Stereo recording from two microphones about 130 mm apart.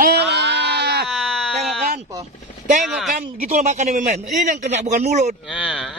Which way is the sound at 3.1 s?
85° right.